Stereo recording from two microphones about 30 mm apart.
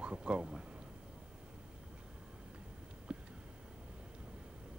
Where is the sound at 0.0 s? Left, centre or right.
Right.